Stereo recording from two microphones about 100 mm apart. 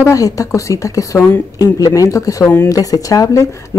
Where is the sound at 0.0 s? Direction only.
35° left (ahead or behind).